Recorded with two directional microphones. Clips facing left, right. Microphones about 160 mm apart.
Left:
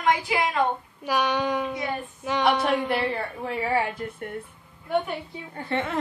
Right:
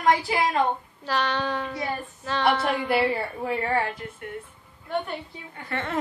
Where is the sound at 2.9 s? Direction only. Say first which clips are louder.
Right 3 dB; 5° right (ahead or behind).